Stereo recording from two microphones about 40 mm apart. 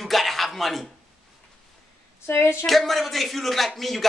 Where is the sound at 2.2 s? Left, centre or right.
Left.